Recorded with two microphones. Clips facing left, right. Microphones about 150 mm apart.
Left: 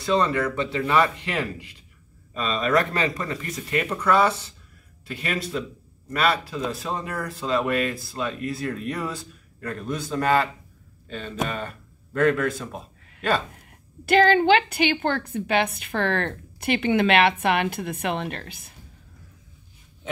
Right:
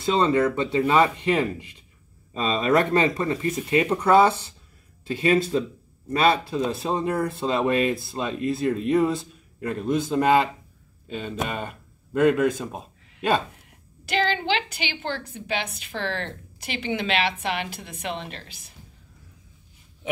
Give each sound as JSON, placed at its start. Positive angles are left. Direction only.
{"t": 0.0, "sound": "speech", "side_deg": -20}
{"t": 14.0, "sound": "a woman's voice", "side_deg": 50}